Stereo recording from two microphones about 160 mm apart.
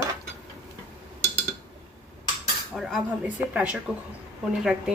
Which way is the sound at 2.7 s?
Centre (ahead or behind).